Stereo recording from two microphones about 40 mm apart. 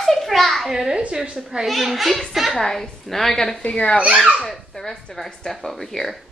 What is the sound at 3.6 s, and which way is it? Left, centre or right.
Speech, left.